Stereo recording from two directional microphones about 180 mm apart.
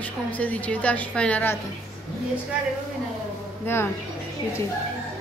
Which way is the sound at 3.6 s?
15° left (ahead or behind).